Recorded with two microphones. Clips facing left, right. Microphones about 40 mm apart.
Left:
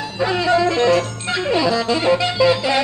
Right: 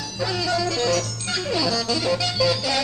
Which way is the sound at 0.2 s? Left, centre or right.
Left.